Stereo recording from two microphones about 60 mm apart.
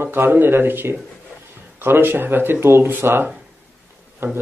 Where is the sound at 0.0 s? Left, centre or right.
Right.